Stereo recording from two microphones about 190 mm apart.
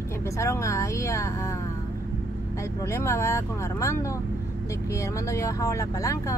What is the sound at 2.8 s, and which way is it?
Speech, 15° left (ahead or behind).